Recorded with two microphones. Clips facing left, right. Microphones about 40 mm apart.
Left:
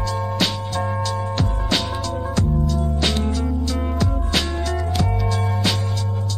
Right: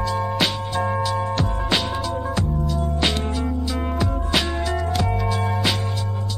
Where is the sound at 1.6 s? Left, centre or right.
Centre.